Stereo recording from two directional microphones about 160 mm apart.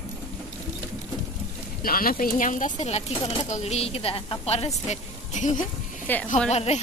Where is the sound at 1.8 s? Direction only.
65° left (ahead or behind); by 5.6 s 45° left (ahead or behind).